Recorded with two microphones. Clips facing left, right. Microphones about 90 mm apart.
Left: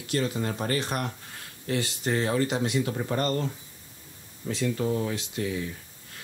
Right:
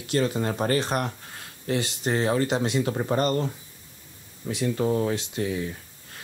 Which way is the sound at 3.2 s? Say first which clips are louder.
Right 2 dB; 20° right (ahead or behind).